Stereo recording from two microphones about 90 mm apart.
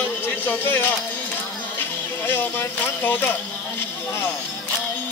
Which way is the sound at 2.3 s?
25° left (ahead or behind).